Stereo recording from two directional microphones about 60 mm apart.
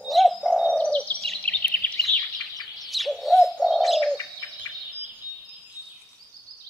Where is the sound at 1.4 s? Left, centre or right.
Left.